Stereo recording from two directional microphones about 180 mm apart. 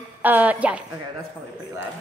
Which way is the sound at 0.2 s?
10° right (ahead or behind).